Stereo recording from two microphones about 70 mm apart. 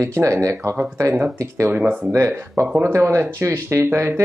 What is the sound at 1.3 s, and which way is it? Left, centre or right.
Speech, right.